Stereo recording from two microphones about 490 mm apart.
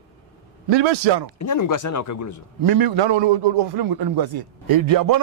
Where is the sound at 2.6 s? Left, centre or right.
Right.